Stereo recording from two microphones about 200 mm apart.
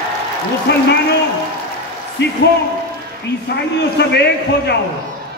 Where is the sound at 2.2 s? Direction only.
60° left (ahead or behind).